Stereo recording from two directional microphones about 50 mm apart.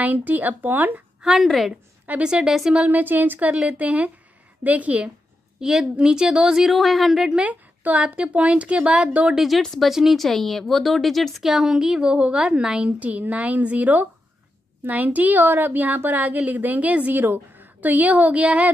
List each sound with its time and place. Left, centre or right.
0.0 s a woman's voice: right
1.2 s speech: centre
2.2 s a woman's voice: centre
2.9 s a woman's voice: right
5.6 s a woman's voice: centre
6.6 s speech: centre
7.2 s a woman's voice: centre
7.4 s a woman's voice: right
9.3 s a woman's voice: centre
11.4 s a woman's voice: centre
13.0 s a woman's voice: right
17.1 s a woman's voice: right